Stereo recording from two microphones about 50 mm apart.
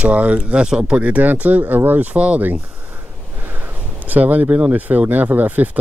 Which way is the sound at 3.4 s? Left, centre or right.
Right.